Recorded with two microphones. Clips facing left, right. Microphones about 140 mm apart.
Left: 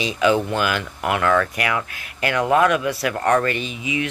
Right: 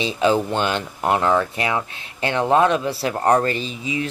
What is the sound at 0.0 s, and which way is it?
Speech, 30° right (ahead or behind).